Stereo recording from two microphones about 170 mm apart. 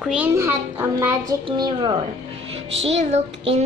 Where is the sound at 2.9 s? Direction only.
40° right (ahead or behind).